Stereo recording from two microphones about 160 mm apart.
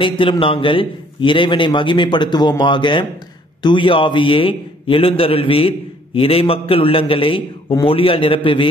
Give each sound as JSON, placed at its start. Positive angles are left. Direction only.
{"t": 0.0, "sound": "a man's voice", "side_deg": 30}